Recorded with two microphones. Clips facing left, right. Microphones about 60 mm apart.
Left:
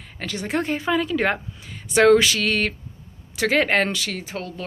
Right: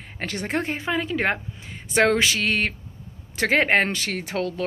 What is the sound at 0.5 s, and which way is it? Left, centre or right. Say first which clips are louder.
Speech: left 4 dB; right.